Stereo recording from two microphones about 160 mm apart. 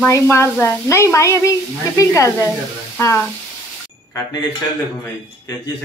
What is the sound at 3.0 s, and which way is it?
Frying, 15° left (ahead or behind).